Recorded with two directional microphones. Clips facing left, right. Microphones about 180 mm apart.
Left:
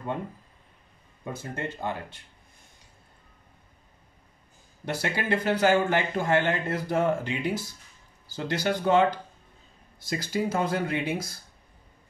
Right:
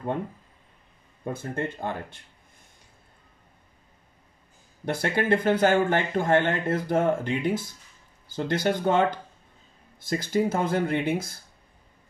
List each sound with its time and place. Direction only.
1.3 s speech: 55° right (ahead or behind)
4.8 s speech: 50° right (ahead or behind)